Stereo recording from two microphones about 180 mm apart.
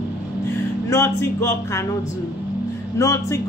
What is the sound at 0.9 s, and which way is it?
Speech, 15° left (ahead or behind).